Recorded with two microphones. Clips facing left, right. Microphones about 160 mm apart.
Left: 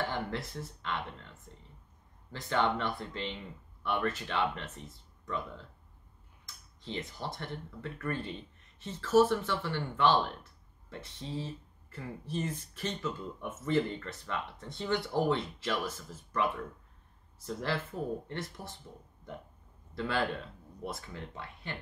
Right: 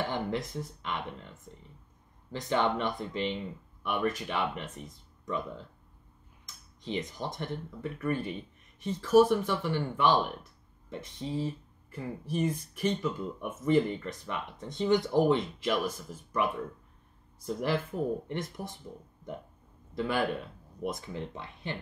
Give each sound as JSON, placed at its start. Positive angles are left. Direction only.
{"t": 0.1, "sound": "a sound", "side_deg": -15}
{"t": 2.3, "sound": "speech", "side_deg": -15}
{"t": 6.4, "sound": "speech", "side_deg": -15}
{"t": 19.9, "sound": "speech", "side_deg": -15}